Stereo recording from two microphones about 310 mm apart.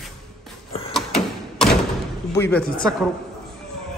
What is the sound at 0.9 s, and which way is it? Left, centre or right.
Thump, centre.